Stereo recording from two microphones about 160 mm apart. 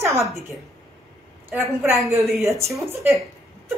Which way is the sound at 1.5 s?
15° right (ahead or behind).